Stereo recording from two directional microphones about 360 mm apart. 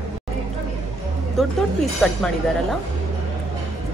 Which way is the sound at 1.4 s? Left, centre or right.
Centre.